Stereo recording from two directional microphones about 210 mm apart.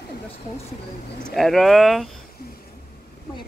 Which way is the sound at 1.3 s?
Centre (ahead or behind).